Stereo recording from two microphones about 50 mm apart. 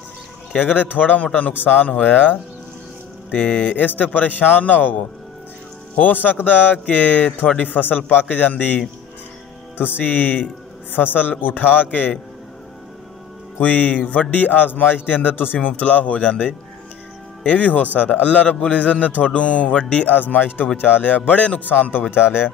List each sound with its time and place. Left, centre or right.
0.6 s a man's voice: left
3.7 s a man's voice: left
5.9 s a man's voice: left
9.9 s a man's voice: left
13.6 s a man's voice: left
15.8 s a man's voice: left
20.1 s a man's voice: left
22.1 s speech: left